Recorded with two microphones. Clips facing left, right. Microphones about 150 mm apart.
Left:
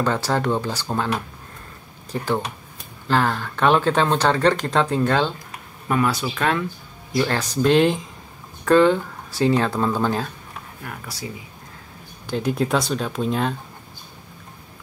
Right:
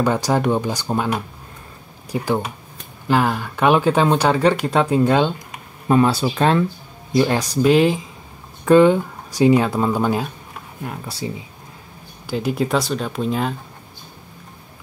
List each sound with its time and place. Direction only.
0.0 s speech: 15° right (ahead or behind)
5.9 s speech: 30° right (ahead or behind)
7.1 s speech: 20° right (ahead or behind); by 8.1 s centre (ahead or behind)
8.6 s speech: 15° right (ahead or behind)
10.8 s speech: 25° right (ahead or behind)
12.3 s speech: 5° right (ahead or behind)